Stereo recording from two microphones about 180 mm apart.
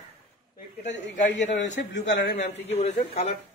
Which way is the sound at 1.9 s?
70° left (ahead or behind).